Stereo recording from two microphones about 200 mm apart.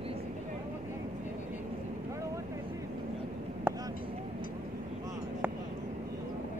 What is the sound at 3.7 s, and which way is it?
Vehicle, 10° right (ahead or behind).